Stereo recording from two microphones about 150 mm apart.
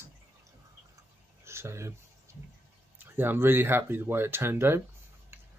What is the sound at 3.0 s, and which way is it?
Speech, 15° right (ahead or behind).